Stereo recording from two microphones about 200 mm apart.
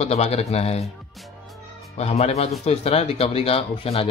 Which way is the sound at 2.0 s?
30° left (ahead or behind).